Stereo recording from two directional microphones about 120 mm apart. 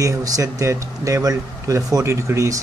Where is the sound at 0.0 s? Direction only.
30° right (ahead or behind).